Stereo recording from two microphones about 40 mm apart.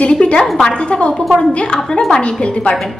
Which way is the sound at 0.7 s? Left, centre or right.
Left.